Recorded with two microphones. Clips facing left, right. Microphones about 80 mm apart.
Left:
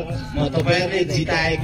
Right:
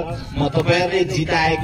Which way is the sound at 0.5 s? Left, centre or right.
Centre.